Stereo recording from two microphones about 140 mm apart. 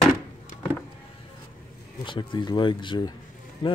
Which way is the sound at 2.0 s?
35° left (ahead or behind).